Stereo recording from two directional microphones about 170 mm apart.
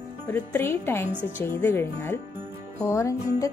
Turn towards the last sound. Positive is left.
turn(degrees=20)  # may be behind; listen again after turning